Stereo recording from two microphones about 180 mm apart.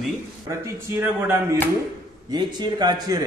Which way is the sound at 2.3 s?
25° right (ahead or behind).